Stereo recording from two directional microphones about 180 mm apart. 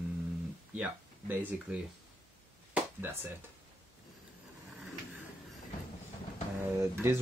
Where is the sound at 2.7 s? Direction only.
10° right (ahead or behind).